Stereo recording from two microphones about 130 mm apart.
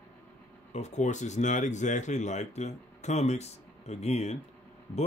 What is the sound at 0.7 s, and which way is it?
Speech, 60° left (ahead or behind).